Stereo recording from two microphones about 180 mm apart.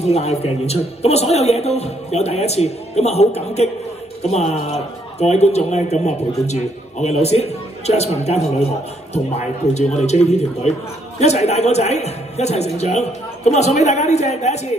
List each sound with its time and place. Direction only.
0.1 s a man's voice: 35° left (ahead or behind)